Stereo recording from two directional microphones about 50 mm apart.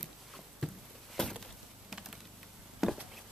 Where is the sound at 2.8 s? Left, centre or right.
Centre.